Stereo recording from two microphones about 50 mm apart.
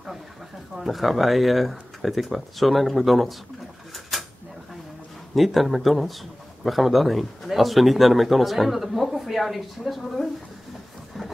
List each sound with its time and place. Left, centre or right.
0.7 s speech: centre
4.1 s drawer open or close: centre
5.3 s speech: centre